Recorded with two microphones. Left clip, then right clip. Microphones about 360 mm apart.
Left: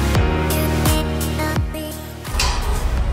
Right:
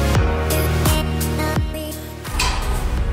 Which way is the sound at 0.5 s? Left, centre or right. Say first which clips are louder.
Even; centre.